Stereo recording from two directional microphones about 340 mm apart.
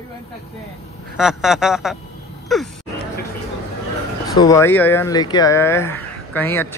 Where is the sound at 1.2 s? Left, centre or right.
Centre.